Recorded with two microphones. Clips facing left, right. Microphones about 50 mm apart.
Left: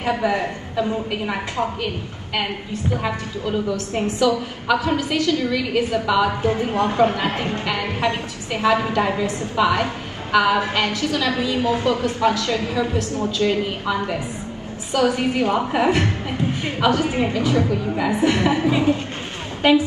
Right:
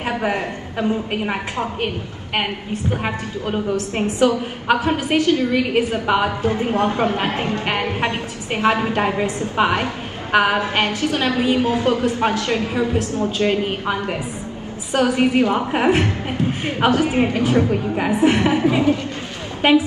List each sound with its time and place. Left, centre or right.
0.0 s a woman's voice: right
2.9 s a woman's voice: right